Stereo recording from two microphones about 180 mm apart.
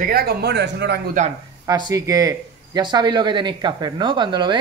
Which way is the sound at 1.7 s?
20° right (ahead or behind).